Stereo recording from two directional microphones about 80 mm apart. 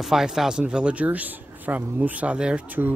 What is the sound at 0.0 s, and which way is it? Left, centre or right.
Speech, centre.